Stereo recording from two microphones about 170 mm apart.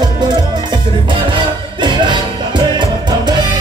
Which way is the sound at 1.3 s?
30° right (ahead or behind).